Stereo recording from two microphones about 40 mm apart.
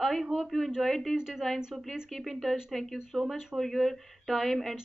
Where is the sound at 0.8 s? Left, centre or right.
Centre.